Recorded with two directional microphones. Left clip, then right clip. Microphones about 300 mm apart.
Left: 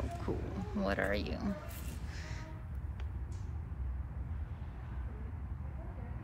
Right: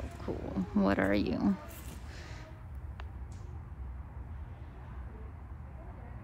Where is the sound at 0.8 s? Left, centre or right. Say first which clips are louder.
Right 4 dB; centre.